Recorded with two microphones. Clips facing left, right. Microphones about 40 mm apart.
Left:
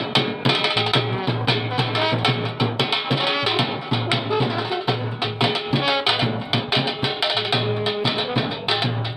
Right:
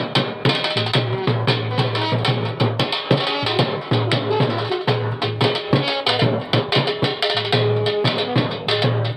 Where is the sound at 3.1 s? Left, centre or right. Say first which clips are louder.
Right 1 dB; left.